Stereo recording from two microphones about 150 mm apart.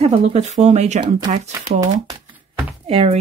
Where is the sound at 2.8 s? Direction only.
40° right (ahead or behind).